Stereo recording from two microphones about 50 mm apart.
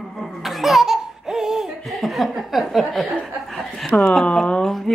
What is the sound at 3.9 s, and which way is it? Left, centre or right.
Speech, left.